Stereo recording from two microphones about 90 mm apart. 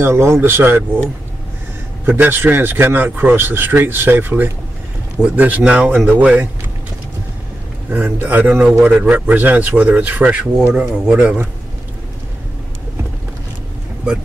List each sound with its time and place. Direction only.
0.0 s speech: 30° right (ahead or behind)
2.0 s a man's voice: 20° right (ahead or behind)
7.9 s a man's voice: 15° right (ahead or behind)